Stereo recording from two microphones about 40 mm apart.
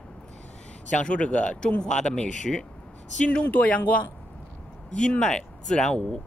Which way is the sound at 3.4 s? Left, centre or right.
Left.